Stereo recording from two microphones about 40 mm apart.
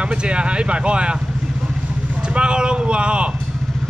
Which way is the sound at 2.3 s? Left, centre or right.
Right.